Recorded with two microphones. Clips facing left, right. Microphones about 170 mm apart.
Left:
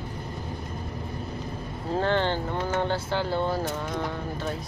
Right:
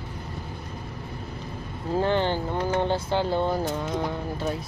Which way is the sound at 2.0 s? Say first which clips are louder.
Right 1 dB; 15° right (ahead or behind).